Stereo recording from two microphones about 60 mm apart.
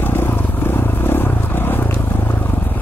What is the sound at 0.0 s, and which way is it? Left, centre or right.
Vehicle, left.